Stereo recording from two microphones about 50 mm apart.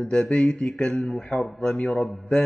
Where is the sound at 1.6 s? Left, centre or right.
Left.